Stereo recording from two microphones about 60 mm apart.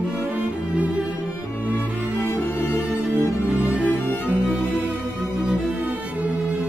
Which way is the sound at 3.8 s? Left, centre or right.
Left.